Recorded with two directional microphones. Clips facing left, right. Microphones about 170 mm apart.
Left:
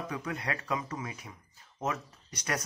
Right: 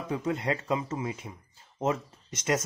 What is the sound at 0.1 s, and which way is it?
Speech, 25° right (ahead or behind).